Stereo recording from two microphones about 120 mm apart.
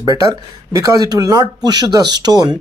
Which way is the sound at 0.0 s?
30° right (ahead or behind).